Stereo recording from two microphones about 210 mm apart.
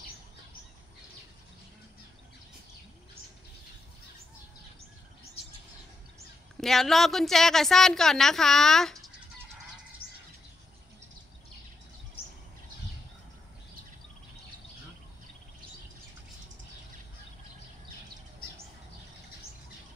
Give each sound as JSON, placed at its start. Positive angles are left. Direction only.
{"t": 6.5, "sound": "a woman's voice", "side_deg": 0}
{"t": 10.0, "sound": "bird", "side_deg": 25}
{"t": 12.2, "sound": "a sound", "side_deg": 25}